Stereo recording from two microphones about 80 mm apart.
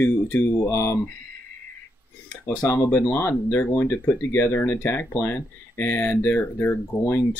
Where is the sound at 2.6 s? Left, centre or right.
Left.